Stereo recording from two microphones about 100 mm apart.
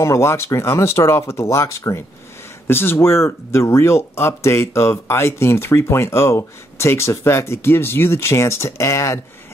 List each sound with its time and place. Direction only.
0.0 s speech: 30° left (ahead or behind)